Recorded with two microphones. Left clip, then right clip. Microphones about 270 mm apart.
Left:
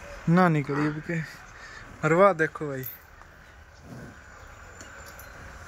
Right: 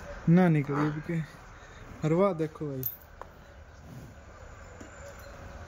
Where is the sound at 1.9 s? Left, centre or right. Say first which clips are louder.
Left 7 dB; centre.